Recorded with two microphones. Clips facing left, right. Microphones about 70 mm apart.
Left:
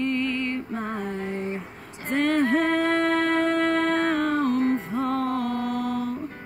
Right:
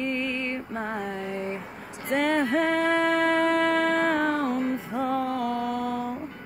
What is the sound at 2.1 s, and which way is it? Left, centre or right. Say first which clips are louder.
Music: left 2 dB; centre.